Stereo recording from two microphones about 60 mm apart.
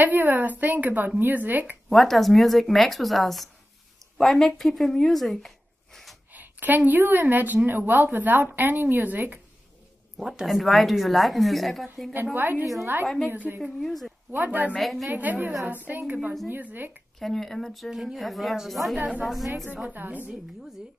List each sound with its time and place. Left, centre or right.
0.0 s a woman's voice: right
1.9 s a woman's voice: centre
6.3 s a woman's voice: right
10.1 s a woman's voice: centre
12.4 s a woman's voice: right
13.6 s a woman's voice: centre
14.3 s a woman's voice: right
14.8 s a woman's voice: centre
15.0 s a woman's voice: right
17.2 s a woman's voice: centre
19.9 s a woman's voice: right